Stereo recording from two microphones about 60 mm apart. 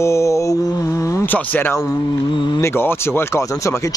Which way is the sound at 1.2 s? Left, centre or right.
Left.